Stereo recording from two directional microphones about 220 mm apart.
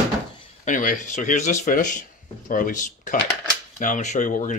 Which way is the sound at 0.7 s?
35° left (ahead or behind).